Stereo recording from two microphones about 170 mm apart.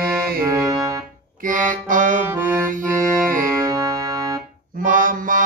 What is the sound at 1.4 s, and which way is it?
Music, 50° right (ahead or behind).